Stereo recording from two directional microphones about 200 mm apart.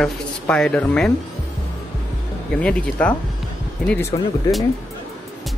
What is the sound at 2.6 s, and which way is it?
Speech, 5° left (ahead or behind).